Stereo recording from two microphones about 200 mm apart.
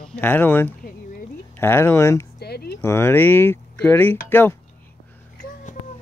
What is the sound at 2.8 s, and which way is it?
Speech, 10° left (ahead or behind).